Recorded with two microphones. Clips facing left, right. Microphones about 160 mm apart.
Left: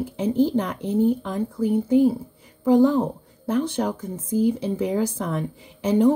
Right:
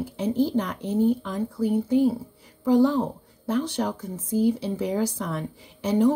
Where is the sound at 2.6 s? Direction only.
20° left (ahead or behind).